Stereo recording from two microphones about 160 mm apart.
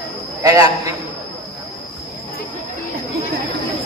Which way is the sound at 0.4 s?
20° right (ahead or behind).